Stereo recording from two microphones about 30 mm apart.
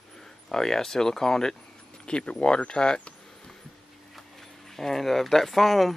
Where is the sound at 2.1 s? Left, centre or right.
Left.